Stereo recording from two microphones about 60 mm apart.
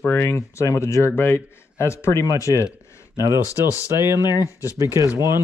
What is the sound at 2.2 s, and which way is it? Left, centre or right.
Speech, left.